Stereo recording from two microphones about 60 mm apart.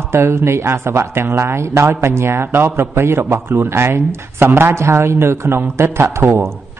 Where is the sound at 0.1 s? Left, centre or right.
Right.